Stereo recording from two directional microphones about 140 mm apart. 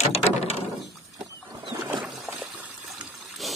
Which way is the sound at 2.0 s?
Centre (ahead or behind).